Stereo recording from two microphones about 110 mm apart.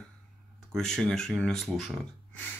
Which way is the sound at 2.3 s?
15° left (ahead or behind).